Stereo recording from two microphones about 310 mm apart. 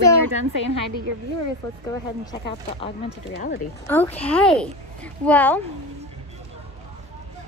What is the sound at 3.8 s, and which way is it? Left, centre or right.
A woman's voice, centre.